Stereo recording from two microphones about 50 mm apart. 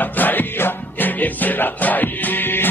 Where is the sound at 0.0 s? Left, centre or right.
Left.